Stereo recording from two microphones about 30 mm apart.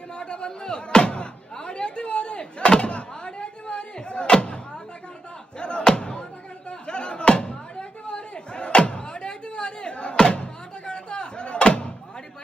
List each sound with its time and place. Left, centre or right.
0.2 s a sound: left
2.8 s slam: left
5.6 s slam: left